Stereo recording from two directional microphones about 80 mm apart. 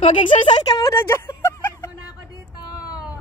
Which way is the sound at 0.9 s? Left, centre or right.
Left.